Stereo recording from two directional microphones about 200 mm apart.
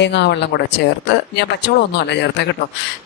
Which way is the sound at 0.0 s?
60° left (ahead or behind).